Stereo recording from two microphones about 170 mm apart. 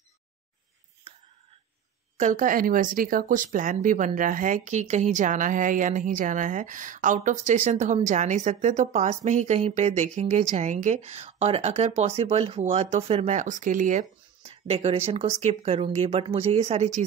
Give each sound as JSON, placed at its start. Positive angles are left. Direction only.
{"t": 2.1, "sound": "speech", "side_deg": -45}
{"t": 14.4, "sound": "a sound", "side_deg": -35}
{"t": 15.0, "sound": "speech", "side_deg": -35}